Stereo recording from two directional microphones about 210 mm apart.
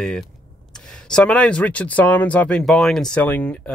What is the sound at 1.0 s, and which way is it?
Speech, 5° left (ahead or behind).